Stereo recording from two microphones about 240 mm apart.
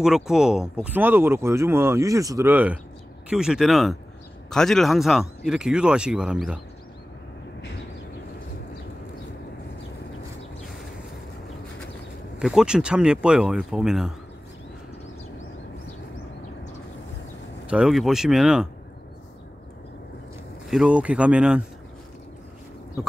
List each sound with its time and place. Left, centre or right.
0.0 s speech: centre
12.4 s speech: centre
17.6 s speech: centre
20.7 s speech: centre